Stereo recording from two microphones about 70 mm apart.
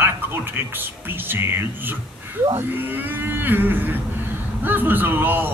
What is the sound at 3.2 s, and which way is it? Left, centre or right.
Speech, right.